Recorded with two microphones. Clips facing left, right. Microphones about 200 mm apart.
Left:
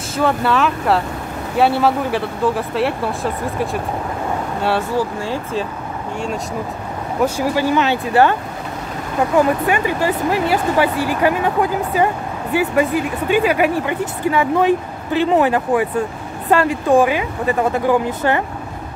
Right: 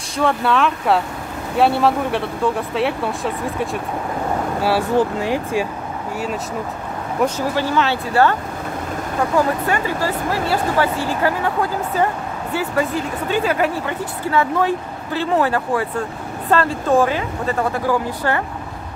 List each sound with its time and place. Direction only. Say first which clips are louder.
0.1 s speech: left 1 dB; centre (ahead or behind)
4.9 s speech: right 3 dB; 15° right (ahead or behind)
7.2 s a woman's voice: left 2 dB; 10° left (ahead or behind)
9.7 s a woman's voice: left 3 dB; 15° left (ahead or behind)